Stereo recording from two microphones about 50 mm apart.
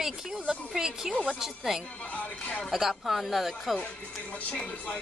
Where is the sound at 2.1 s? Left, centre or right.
Left.